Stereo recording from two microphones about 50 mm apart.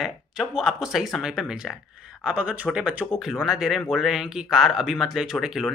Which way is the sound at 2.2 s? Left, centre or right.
Right.